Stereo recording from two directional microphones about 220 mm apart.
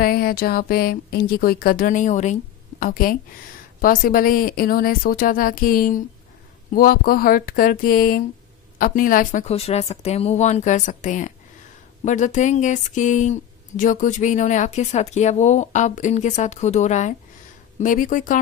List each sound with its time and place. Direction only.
0.0 s speech: 45° left (ahead or behind)